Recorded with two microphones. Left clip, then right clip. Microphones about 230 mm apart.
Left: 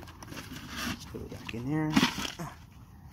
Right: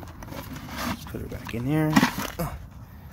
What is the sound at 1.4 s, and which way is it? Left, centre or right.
Speech, centre.